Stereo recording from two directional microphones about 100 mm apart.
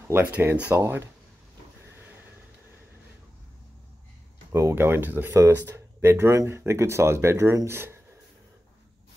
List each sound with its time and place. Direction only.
0.1 s speech: 20° right (ahead or behind)
4.5 s speech: 30° right (ahead or behind)